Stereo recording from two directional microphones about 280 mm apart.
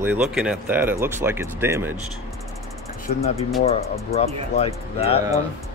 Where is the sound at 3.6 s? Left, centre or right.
Left.